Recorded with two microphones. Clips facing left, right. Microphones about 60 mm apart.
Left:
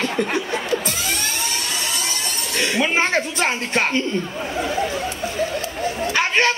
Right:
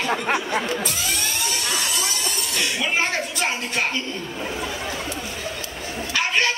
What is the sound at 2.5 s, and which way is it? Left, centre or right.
Speech, left.